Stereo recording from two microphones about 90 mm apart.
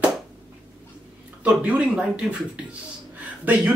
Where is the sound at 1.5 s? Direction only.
10° right (ahead or behind).